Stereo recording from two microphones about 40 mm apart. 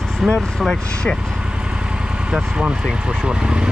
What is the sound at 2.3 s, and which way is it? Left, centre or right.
Speech, right.